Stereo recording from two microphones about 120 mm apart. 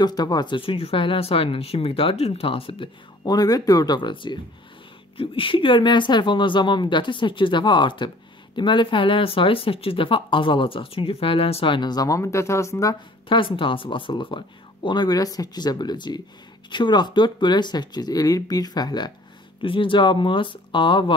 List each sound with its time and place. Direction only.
0.0 s speech: 35° left (ahead or behind)
3.3 s speech: 30° left (ahead or behind)
13.3 s speech: 45° left (ahead or behind)
19.6 s speech: 45° left (ahead or behind)